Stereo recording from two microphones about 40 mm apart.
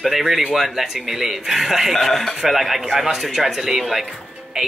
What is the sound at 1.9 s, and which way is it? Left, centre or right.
Speech, centre.